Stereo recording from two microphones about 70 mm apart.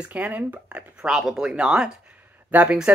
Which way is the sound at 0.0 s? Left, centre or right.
Right.